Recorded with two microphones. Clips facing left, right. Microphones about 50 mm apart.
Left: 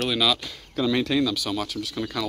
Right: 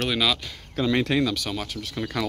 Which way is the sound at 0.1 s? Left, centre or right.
Right.